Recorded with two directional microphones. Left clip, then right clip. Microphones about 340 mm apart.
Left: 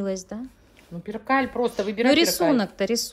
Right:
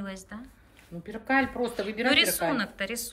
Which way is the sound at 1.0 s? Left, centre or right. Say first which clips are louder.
Left 3 dB; left.